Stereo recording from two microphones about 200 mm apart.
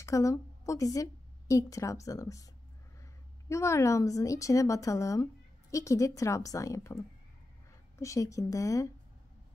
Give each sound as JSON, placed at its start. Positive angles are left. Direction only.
{"t": 0.0, "sound": "a woman's voice", "side_deg": 15}